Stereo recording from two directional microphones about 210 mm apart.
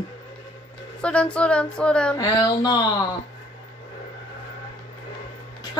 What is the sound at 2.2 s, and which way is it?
Speech, 20° left (ahead or behind).